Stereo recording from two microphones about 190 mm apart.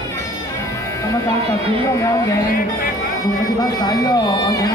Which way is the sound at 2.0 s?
15° left (ahead or behind).